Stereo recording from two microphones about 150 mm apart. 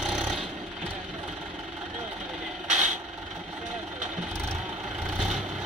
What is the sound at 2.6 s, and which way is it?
Vehicle, 50° right (ahead or behind).